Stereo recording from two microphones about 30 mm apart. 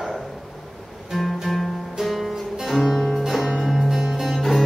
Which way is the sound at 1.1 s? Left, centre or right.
Centre.